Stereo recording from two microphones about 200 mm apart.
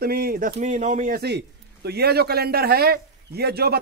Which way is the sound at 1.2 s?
55° right (ahead or behind).